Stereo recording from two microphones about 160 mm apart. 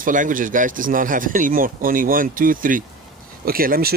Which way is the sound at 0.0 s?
55° right (ahead or behind).